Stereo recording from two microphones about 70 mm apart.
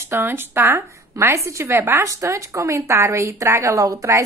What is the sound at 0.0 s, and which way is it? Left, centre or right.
Speech, right.